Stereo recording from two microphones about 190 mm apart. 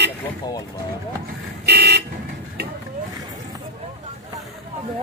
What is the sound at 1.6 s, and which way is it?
Car, 60° right (ahead or behind).